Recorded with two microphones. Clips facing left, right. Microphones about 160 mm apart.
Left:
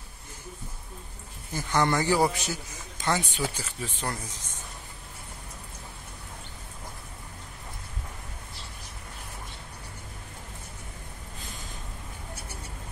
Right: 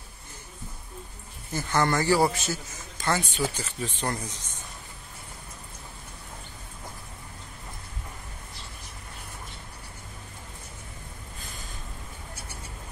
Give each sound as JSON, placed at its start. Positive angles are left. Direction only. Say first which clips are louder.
{"t": 1.5, "sound": "a man's voice", "louder": "even", "side_deg": 15}
{"t": 3.4, "sound": "speech", "louder": "right 2 dB", "side_deg": 5}